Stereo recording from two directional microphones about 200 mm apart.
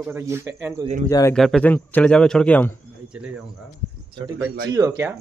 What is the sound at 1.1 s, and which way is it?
Speech, 20° left (ahead or behind).